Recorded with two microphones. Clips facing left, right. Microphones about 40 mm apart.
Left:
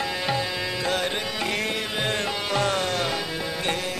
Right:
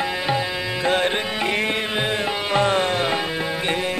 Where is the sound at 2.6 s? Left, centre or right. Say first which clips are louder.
Right 6 dB; right.